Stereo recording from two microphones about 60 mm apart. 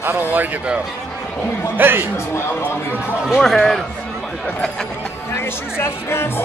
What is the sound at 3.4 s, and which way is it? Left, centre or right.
Speech, centre.